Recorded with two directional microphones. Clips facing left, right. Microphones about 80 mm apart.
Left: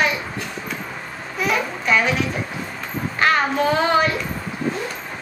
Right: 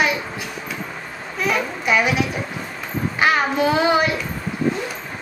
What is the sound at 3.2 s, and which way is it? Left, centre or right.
Child singing, centre.